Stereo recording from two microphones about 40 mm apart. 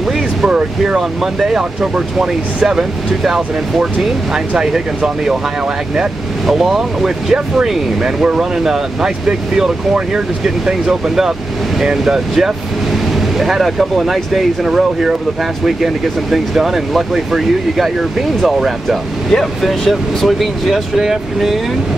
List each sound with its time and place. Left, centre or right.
0.5 s speech: right
1.2 s speech: centre
1.6 s speech: centre
6.4 s speech: centre